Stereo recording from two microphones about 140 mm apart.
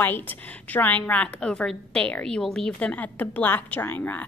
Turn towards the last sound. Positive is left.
turn(degrees=15)  # may be behind; listen again after turning